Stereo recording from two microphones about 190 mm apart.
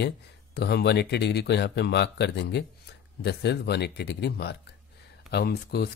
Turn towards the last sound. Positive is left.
turn(degrees=60)  # may be behind; listen again after turning